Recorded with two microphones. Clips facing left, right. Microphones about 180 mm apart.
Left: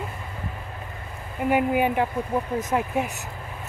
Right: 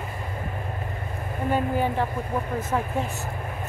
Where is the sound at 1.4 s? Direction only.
15° left (ahead or behind).